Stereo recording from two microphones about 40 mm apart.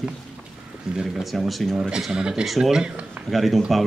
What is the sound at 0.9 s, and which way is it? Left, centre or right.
Speech, centre.